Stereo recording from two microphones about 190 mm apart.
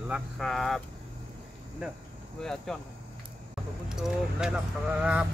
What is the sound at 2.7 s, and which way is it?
Speech, 5° left (ahead or behind).